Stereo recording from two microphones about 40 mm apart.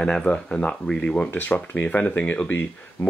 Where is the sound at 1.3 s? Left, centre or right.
Left.